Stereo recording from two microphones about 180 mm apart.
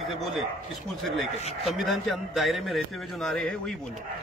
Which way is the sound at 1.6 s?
Centre (ahead or behind).